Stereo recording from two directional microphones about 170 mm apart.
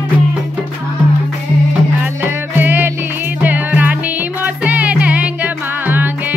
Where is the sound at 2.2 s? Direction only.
10° right (ahead or behind).